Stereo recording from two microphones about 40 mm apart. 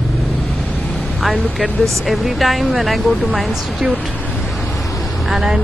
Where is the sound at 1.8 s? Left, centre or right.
Centre.